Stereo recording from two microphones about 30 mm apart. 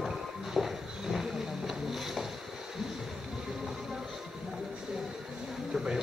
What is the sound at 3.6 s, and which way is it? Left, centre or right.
Music, centre.